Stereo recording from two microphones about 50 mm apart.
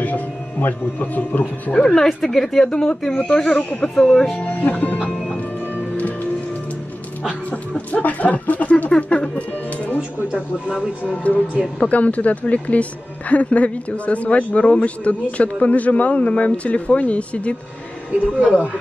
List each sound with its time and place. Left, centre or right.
0.0 s music: left
1.7 s speech: centre
2.2 s speech: centre
4.4 s speech: left
5.1 s music: centre
7.7 s speech: left
10.7 s speech: centre
11.2 s speech: left